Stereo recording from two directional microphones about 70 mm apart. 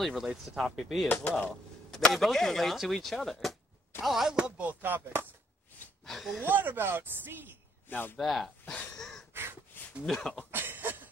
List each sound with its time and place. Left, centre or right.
0.0 s speech: centre
1.1 s speech: centre
1.9 s speech: centre
4.4 s speech: centre
6.0 s speech: centre
6.5 s speech: right
7.9 s speech: left
8.2 s speech: centre
8.6 s a sound: centre
9.3 s a sound: right
10.0 s speech: centre
10.5 s a sound: right